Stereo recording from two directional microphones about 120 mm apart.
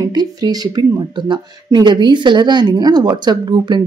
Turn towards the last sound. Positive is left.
turn(degrees=-40)  # may be behind; listen again after turning